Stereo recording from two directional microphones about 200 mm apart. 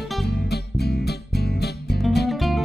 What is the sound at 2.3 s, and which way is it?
Music, centre (ahead or behind).